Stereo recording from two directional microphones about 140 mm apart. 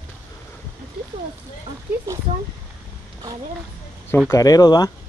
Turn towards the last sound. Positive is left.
turn(degrees=30)  # may be behind; listen again after turning